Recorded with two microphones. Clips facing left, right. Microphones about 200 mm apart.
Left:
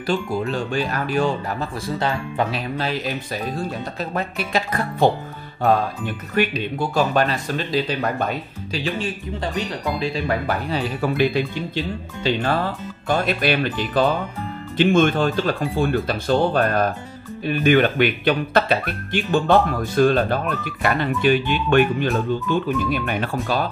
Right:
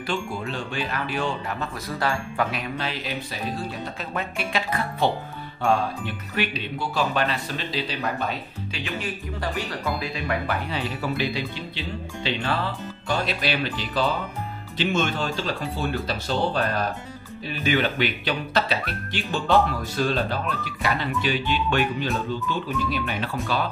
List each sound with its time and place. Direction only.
0.0 s speech: 40° left (ahead or behind)
2.0 s speech: 25° left (ahead or behind)
2.8 s speech: 40° left (ahead or behind)
8.8 s speech: 25° left (ahead or behind); by 23.3 s 50° left (ahead or behind)